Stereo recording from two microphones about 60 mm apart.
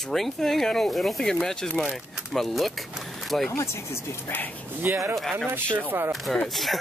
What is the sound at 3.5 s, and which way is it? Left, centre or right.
Speech, left.